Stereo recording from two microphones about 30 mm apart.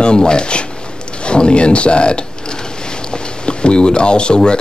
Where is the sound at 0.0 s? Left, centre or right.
Left.